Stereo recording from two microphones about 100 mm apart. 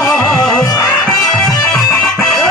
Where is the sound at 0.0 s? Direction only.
5° left (ahead or behind).